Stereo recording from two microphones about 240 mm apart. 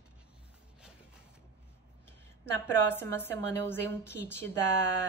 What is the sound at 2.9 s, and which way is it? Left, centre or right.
A woman's voice, centre.